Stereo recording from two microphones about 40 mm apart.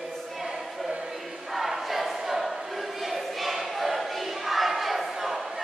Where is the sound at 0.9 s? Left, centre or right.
Right.